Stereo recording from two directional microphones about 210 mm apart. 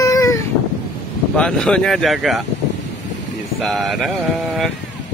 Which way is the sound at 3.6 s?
Centre (ahead or behind).